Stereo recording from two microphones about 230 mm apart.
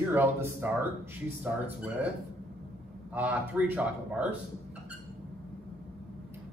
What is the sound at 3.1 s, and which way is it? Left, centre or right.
A man's voice, centre.